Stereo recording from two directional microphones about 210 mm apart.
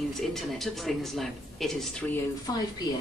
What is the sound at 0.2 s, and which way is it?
Speech, centre (ahead or behind).